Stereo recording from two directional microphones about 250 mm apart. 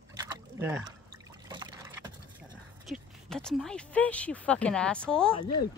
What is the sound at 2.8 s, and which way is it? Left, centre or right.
Speech, centre.